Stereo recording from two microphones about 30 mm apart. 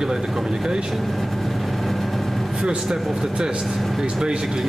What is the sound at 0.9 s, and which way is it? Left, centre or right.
Vehicle, centre.